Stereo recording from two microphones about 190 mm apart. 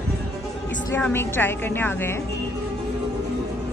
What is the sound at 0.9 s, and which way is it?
Speech, 10° left (ahead or behind).